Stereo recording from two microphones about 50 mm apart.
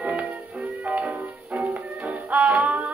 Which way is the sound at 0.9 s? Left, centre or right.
Right.